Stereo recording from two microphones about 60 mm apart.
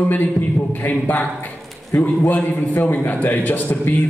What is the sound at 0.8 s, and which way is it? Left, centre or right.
A man's voice, left.